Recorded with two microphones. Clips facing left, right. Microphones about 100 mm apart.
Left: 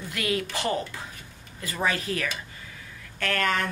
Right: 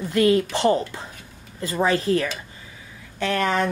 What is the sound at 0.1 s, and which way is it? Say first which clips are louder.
A woman's voice: right 10 dB; 30° right (ahead or behind).